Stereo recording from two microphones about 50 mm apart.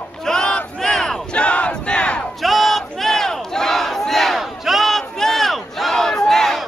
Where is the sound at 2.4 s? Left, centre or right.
Centre.